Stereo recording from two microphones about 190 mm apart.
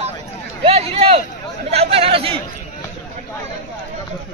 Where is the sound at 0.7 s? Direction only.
30° right (ahead or behind).